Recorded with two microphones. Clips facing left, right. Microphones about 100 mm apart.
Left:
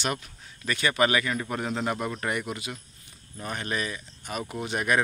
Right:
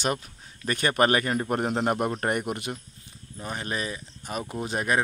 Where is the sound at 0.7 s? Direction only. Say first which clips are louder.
Right 2 dB; 45° right (ahead or behind).